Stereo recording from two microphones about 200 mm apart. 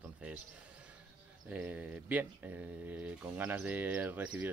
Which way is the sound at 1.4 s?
5° right (ahead or behind).